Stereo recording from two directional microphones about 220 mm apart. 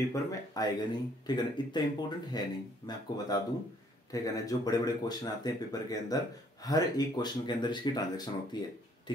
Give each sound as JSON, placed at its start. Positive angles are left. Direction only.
{"t": 0.1, "sound": "speech", "side_deg": 15}